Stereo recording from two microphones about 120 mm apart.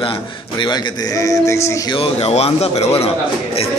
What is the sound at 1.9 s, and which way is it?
Speech, 55° left (ahead or behind).